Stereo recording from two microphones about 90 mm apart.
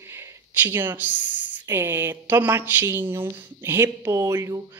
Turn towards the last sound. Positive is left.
turn(degrees=-30)  # may be behind; listen again after turning